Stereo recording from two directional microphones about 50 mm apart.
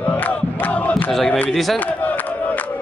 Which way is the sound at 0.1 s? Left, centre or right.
Left.